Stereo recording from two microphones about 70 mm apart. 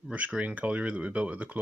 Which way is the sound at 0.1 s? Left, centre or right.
Centre.